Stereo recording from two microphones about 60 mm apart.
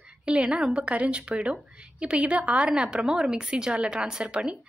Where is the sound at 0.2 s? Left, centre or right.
Centre.